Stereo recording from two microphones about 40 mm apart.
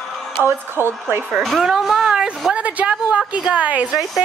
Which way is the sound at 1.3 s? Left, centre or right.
Centre.